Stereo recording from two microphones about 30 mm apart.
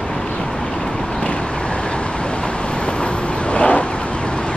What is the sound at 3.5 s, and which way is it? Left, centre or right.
Vehicle, left.